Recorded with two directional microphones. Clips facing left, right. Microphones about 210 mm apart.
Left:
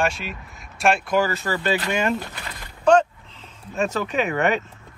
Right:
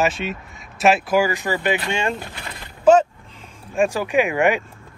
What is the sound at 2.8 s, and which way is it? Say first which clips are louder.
Sheep: right 3 dB; 5° right (ahead or behind).